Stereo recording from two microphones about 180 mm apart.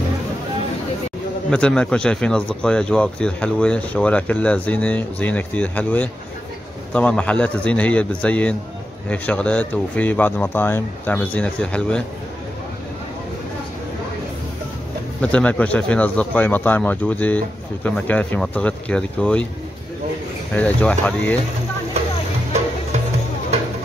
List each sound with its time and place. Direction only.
1.5 s speech: 5° left (ahead or behind)
15.3 s speech: 5° left (ahead or behind)
20.5 s speech: 10° left (ahead or behind)
23.5 s music: 35° right (ahead or behind)